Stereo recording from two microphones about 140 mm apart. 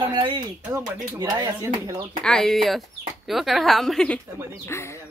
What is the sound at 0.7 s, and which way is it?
Speech, 20° right (ahead or behind).